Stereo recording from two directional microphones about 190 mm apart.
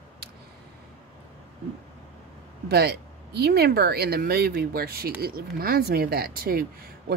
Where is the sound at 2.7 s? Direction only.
60° right (ahead or behind).